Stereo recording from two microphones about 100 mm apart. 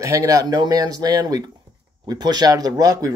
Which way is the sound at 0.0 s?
35° right (ahead or behind).